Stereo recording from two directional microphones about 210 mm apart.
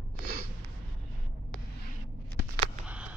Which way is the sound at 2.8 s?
5° right (ahead or behind).